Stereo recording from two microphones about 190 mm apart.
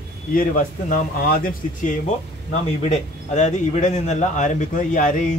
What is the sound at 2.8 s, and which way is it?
A man's voice, 40° left (ahead or behind).